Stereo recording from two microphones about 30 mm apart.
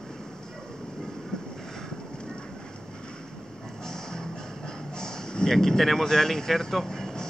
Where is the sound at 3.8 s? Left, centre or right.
Centre.